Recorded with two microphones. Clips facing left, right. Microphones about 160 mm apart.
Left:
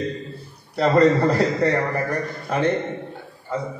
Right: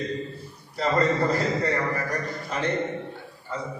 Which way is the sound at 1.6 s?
60° left (ahead or behind).